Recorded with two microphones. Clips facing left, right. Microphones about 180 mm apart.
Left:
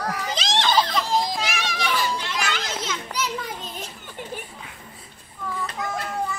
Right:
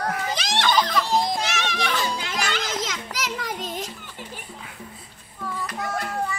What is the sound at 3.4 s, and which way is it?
Children playing, 90° right.